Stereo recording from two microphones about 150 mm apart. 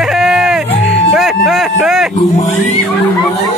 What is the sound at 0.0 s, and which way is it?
Music, 5° right (ahead or behind).